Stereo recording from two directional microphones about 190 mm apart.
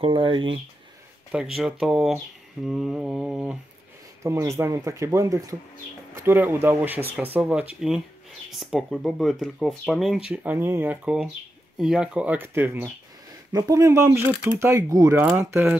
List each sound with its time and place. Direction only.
0.0 s speech: 25° right (ahead or behind)
1.3 s speech: 5° right (ahead or behind)
4.2 s speech: 15° right (ahead or behind)